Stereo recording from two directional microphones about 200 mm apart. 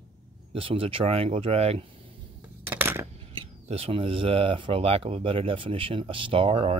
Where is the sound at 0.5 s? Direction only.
25° right (ahead or behind).